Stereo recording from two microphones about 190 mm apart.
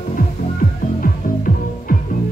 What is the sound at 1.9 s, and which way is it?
Music, 45° left (ahead or behind).